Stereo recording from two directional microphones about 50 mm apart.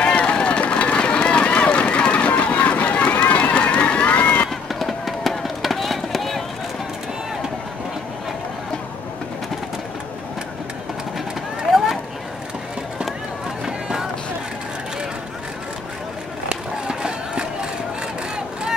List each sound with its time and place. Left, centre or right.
0.0 s run: left
4.7 s run: centre
11.7 s a sound: centre
13.7 s run: centre
16.4 s run: centre
18.3 s vehicle: centre